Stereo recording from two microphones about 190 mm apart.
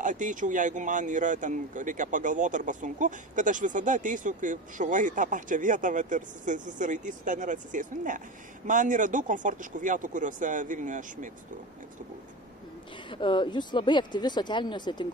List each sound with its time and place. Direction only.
0.0 s speech: 40° right (ahead or behind)
13.1 s speech: 25° left (ahead or behind)